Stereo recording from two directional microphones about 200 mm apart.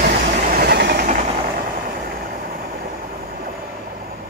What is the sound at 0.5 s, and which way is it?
Train, 55° right (ahead or behind).